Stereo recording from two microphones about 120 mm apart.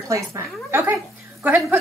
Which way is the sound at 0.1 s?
20° right (ahead or behind).